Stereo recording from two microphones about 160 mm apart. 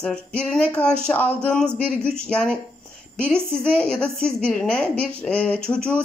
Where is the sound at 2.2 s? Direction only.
5° left (ahead or behind).